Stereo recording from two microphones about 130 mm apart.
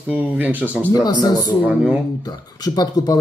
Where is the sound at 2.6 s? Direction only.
30° left (ahead or behind).